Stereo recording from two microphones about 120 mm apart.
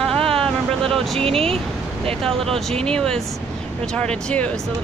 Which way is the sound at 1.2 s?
55° right (ahead or behind).